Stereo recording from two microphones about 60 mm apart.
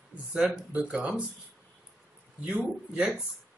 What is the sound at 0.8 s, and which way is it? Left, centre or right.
Speech, centre.